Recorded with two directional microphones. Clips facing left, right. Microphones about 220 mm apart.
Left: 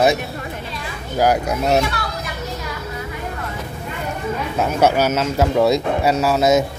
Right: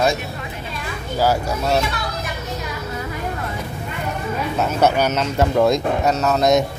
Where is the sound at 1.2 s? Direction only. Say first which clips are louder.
Left 2 dB; 15° left (ahead or behind).